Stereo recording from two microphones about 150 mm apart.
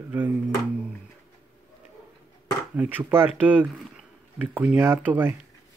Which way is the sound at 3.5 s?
10° right (ahead or behind).